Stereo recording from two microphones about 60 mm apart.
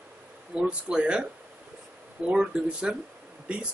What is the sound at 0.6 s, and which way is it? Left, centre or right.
A man's voice, centre.